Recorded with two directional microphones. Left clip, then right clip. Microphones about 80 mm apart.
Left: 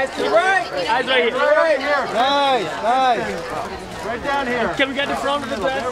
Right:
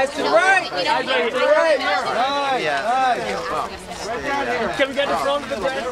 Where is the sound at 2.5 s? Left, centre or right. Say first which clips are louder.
Left 1 dB; centre.